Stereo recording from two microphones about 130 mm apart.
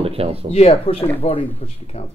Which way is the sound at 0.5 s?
50° left (ahead or behind).